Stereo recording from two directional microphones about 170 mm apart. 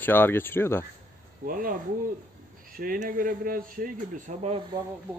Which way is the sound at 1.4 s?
55° right (ahead or behind).